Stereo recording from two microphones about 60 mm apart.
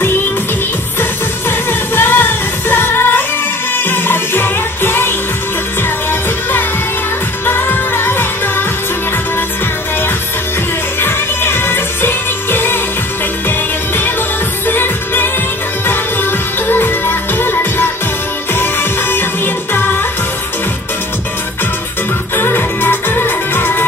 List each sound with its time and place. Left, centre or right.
1.7 s music: left
7.4 s music: left
11.0 s music: left
22.3 s music: left